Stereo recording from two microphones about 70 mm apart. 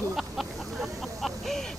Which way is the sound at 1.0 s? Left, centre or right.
Centre.